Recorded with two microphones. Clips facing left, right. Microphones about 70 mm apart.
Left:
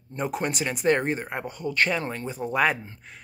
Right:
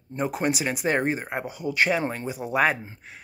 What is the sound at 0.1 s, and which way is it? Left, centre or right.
Speech, centre.